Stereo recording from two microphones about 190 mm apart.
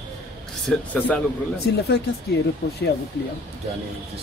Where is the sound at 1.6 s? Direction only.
60° left (ahead or behind).